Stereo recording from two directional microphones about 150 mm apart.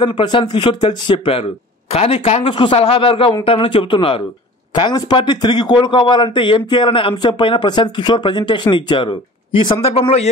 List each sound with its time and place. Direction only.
0.0 s a man's voice: 30° left (ahead or behind)